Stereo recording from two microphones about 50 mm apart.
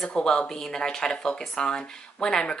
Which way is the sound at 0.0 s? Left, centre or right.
Centre.